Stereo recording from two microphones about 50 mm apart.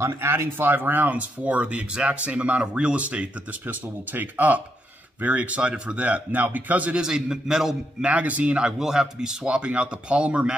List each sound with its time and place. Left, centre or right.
0.0 s speech: right
7.0 s speech: centre
8.0 s speech: right
8.6 s speech: centre